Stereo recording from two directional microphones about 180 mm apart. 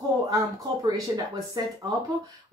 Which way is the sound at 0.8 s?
20° right (ahead or behind).